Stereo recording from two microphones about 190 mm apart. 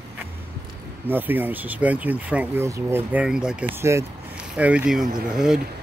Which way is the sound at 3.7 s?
15° right (ahead or behind).